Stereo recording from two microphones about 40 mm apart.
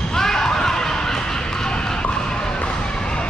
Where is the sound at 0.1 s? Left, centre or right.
Centre.